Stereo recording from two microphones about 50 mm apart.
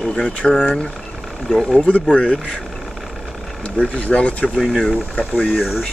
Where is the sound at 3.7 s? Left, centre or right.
Left.